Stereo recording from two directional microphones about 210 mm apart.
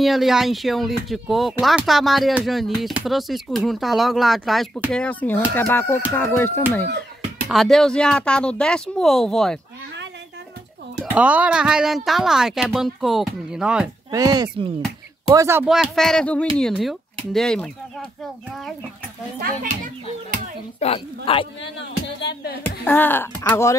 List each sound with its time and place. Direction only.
0.0 s speech: centre (ahead or behind)
7.4 s speech: centre (ahead or behind)
11.0 s speech: 5° right (ahead or behind)
14.1 s speech: 20° right (ahead or behind); by 17.6 s 5° left (ahead or behind)
20.8 s a woman's voice: 25° left (ahead or behind)
21.7 s music: 55° left (ahead or behind)
22.6 s speech: 10° left (ahead or behind)